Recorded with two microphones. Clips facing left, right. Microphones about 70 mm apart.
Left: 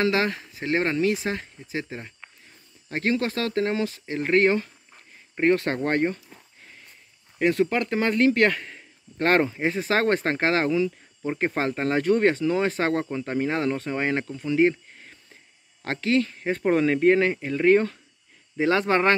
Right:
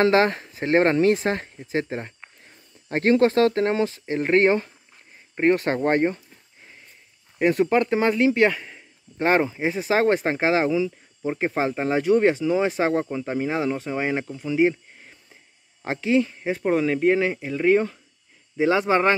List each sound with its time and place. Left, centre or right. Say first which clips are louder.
0.0 s speech: right 5 dB; right; by 16.6 s centre
16.6 s speech: left 1 dB; centre